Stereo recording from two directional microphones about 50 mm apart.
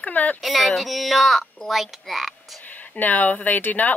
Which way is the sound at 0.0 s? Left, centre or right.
Left.